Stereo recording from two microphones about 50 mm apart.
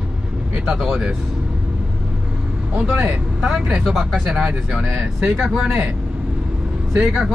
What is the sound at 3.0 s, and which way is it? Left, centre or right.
Speech, right.